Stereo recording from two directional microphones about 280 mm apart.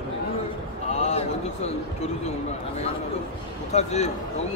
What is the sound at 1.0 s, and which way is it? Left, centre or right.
Speech, left.